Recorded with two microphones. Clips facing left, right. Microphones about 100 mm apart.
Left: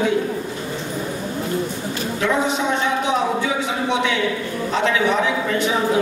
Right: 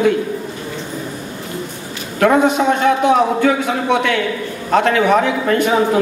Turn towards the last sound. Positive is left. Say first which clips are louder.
# right 4 dB
turn(degrees=-55)  # may be behind; listen again after turning